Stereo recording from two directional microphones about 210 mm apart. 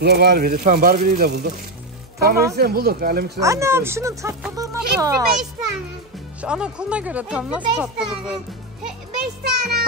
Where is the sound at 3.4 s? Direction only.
15° right (ahead or behind).